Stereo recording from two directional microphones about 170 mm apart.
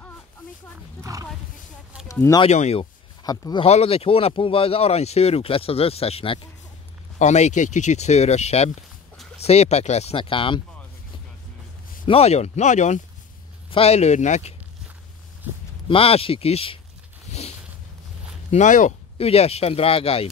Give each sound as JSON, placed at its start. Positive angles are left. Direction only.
{"t": 2.0, "sound": "speech", "side_deg": 20}
{"t": 2.4, "sound": "speech", "side_deg": 40}
{"t": 3.3, "sound": "speech", "side_deg": 20}
{"t": 3.6, "sound": "speech", "side_deg": 35}
{"t": 12.1, "sound": "speech", "side_deg": 40}
{"t": 15.9, "sound": "speech", "side_deg": 35}
{"t": 18.5, "sound": "speech", "side_deg": 45}
{"t": 19.1, "sound": "speech", "side_deg": 35}